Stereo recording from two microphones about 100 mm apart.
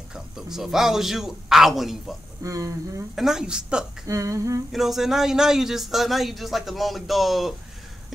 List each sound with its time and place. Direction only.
0.1 s a man's voice: 5° right (ahead or behind)
2.4 s speech: 35° right (ahead or behind)
3.2 s a woman's voice: 5° right (ahead or behind)
4.1 s speech: 30° right (ahead or behind)
4.7 s a man's voice: 5° right (ahead or behind)